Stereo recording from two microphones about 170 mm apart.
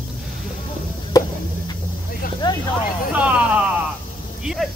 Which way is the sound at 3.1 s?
10° right (ahead or behind).